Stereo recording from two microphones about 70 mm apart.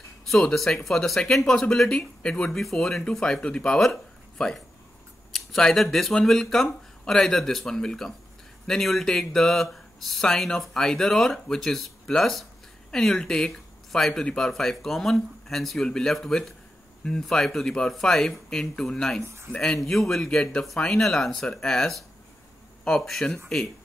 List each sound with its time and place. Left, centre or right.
0.3 s speech: centre
19.2 s speech: right
19.5 s speech: centre